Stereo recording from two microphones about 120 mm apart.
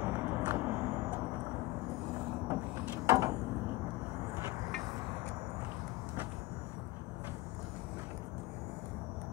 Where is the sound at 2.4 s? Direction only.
20° right (ahead or behind).